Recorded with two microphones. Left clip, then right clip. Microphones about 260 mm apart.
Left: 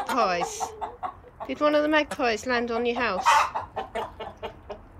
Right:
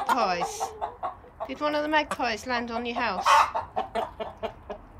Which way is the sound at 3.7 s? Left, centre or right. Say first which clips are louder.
Right 2 dB; right.